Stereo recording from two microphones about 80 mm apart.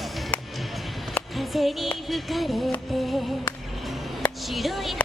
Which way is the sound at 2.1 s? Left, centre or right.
Centre.